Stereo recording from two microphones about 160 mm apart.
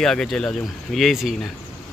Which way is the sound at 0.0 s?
5° left (ahead or behind).